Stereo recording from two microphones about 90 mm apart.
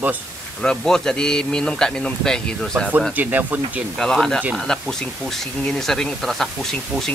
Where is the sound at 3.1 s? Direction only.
20° right (ahead or behind).